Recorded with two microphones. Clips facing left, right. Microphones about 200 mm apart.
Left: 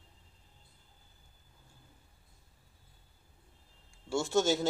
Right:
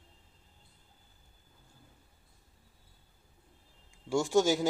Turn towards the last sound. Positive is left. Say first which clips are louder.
# right 2 dB
turn(degrees=-10)  # may be behind; listen again after turning